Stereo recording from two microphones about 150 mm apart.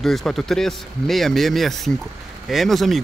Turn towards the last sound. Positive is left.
turn(degrees=0)  # may be behind; listen again after turning